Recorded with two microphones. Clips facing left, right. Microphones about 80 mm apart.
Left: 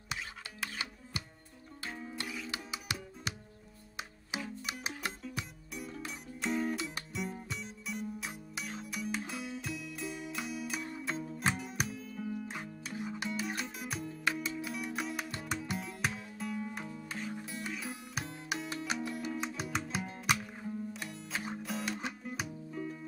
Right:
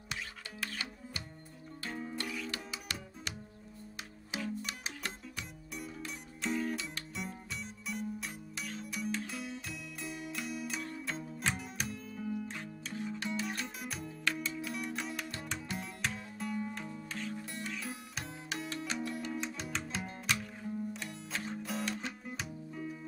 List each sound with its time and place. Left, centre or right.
0.1 s music: centre
1.9 s music: centre
2.1 s music: centre
7.2 s music: centre
12.4 s music: centre
14.2 s music: centre
16.9 s music: centre